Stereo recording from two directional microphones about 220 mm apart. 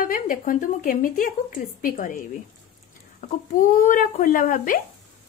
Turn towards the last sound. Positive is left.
turn(degrees=40)  # may be behind; listen again after turning